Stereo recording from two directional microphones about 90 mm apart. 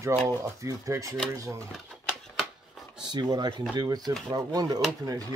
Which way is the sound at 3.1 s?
50° right (ahead or behind).